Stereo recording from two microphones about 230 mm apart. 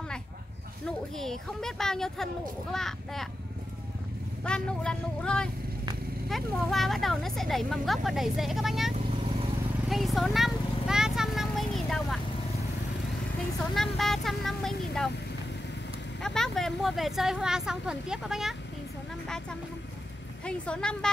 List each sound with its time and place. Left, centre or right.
0.8 s speech: centre
4.5 s speech: centre
8.9 s vehicle: right
9.8 s a sound: centre
13.7 s speech: centre
16.2 s speech: centre
20.4 s speech: centre